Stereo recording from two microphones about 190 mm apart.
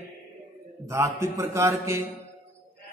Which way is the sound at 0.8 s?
15° right (ahead or behind).